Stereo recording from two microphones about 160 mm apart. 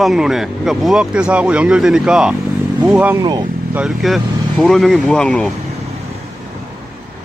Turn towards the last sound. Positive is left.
turn(degrees=5)  # may be behind; listen again after turning